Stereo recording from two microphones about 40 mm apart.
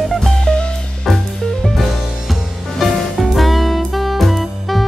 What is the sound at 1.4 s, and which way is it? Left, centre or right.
Music, centre.